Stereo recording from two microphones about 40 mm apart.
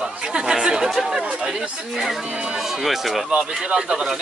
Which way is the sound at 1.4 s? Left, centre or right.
Centre.